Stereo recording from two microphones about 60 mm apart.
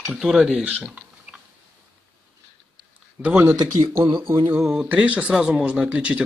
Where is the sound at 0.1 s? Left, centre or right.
Centre.